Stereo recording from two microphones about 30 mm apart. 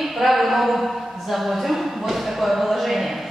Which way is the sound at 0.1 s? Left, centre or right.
Centre.